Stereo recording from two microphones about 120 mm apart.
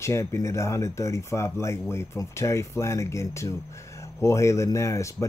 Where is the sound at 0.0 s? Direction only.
25° left (ahead or behind).